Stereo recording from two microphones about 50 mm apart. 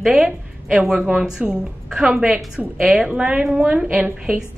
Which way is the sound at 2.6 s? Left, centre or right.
Right.